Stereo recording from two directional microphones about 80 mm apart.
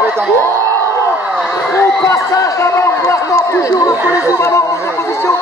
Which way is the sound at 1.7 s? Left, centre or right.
Left.